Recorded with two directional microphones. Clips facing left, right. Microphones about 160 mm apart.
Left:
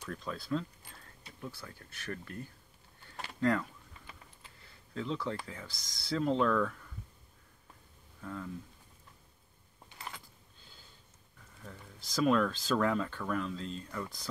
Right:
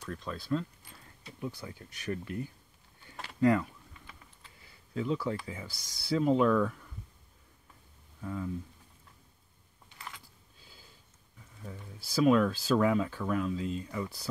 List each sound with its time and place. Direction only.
0.0 s speech: centre (ahead or behind)
1.4 s speech: 15° right (ahead or behind)
3.3 s speech: 5° right (ahead or behind)
4.9 s speech: 5° right (ahead or behind)
8.2 s speech: 5° right (ahead or behind)
10.6 s a sound: 5° right (ahead or behind)
11.6 s speech: 10° right (ahead or behind)